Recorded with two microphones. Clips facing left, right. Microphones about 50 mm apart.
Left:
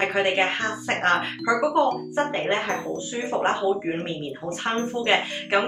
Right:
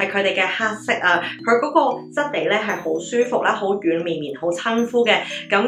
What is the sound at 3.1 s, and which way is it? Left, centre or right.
Speech, right.